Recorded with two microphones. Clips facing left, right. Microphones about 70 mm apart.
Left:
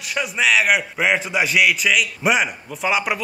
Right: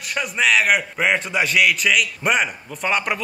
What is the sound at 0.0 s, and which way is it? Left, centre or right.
A man's voice, centre.